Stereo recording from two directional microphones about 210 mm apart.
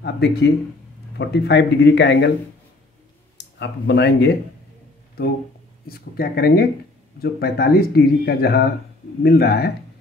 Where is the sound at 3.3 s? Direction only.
55° left (ahead or behind).